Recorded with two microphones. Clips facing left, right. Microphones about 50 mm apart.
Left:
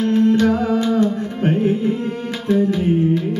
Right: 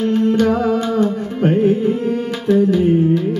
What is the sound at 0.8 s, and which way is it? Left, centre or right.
Carnatic music, centre.